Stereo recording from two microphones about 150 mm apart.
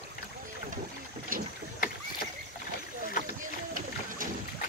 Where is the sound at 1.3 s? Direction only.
70° right (ahead or behind).